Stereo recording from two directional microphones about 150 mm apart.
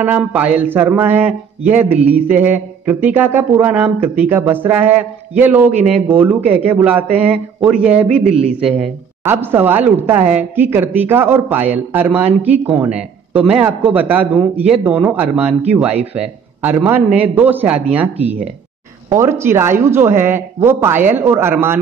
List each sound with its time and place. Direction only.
0.0 s speech: 10° right (ahead or behind)
16.6 s speech: 10° right (ahead or behind)